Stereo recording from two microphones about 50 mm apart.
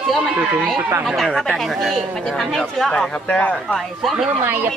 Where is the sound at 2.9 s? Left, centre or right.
Left.